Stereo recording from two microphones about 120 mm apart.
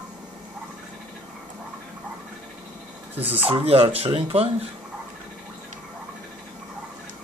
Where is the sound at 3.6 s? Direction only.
50° right (ahead or behind).